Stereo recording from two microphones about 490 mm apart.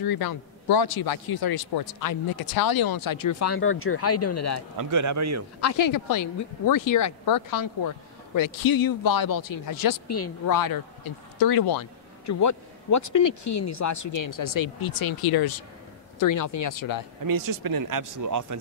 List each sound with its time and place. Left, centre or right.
0.0 s a man's voice: left
4.7 s speech: right
5.6 s speech: left
12.3 s speech: left
17.3 s speech: right